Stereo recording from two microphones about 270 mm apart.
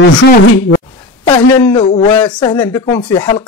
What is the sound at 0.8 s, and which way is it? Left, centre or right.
Speech, centre.